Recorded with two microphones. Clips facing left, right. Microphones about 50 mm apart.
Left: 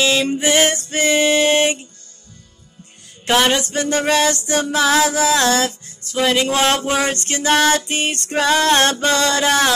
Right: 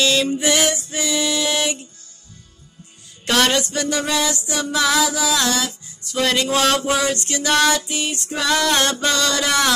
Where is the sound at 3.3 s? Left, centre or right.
Left.